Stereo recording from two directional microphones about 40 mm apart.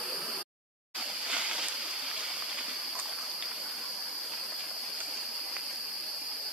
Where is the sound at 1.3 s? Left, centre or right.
Right.